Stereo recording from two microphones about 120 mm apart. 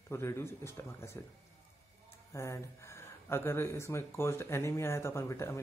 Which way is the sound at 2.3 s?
25° left (ahead or behind).